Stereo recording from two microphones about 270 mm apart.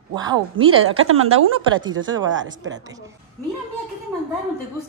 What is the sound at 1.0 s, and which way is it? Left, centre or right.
Speech, right.